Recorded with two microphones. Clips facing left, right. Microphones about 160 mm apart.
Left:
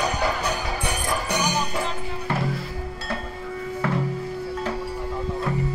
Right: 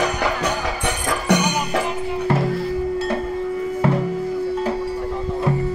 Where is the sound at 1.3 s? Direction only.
75° right (ahead or behind).